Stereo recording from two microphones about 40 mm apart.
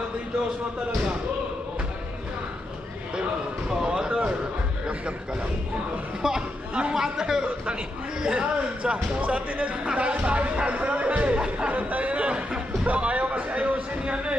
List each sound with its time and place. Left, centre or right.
3.7 s speech: centre
6.2 s a man's voice: centre
8.9 s speech: right
11.7 s a sound: right